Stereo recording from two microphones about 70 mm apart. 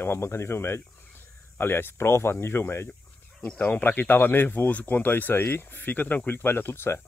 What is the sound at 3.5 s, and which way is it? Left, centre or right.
Speech, left.